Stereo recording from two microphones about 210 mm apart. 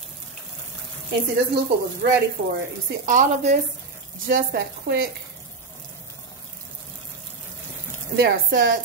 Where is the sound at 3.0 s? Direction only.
35° right (ahead or behind).